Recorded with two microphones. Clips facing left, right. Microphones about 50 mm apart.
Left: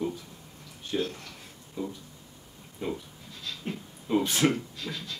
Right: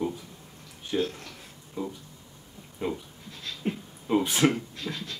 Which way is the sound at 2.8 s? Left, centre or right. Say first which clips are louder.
Right 2 dB; right.